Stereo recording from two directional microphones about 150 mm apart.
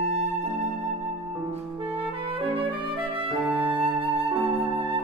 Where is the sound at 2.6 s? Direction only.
35° right (ahead or behind).